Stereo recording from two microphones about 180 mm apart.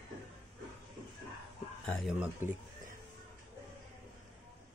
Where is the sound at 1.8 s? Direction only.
5° left (ahead or behind).